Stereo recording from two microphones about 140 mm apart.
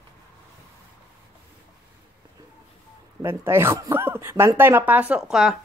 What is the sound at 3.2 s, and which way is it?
Speech, 15° right (ahead or behind).